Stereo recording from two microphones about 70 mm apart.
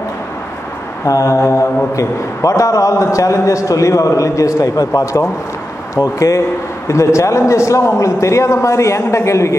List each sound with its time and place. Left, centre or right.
1.0 s a man's voice: left